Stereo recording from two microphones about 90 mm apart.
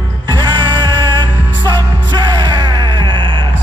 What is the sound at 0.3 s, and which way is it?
Music, 55° right (ahead or behind).